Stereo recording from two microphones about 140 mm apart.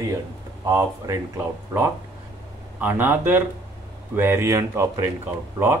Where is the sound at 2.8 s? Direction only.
15° right (ahead or behind).